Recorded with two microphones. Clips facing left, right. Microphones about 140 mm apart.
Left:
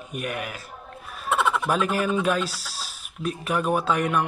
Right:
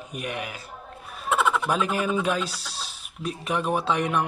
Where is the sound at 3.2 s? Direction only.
30° right (ahead or behind).